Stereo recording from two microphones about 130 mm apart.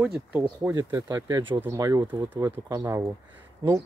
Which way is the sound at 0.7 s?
25° right (ahead or behind).